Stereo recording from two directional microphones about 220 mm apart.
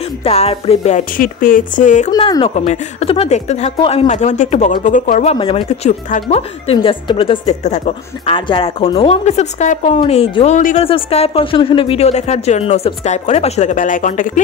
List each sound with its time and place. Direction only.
0.2 s speech: 30° left (ahead or behind)
2.0 s speech: 20° left (ahead or behind); by 14.4 s 35° left (ahead or behind)